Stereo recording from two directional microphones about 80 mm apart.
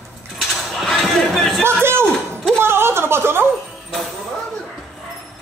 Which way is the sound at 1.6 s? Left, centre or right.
Right.